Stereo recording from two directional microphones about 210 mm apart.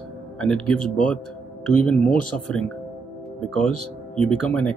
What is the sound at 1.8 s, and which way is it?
Speech, 5° left (ahead or behind).